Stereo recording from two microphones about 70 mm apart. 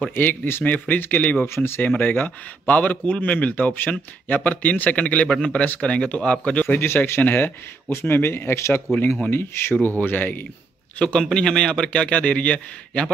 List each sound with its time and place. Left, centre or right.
0.1 s speech: left
1.5 s a man's voice: left
1.8 s a man's voice: left
6.6 s a man's voice: left
11.0 s a man's voice: centre